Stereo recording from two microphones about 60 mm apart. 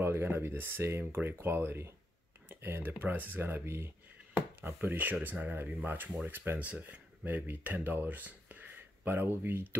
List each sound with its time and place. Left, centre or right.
0.0 s speech: right
4.3 s a sound: right
4.8 s speech: right
6.6 s speech: right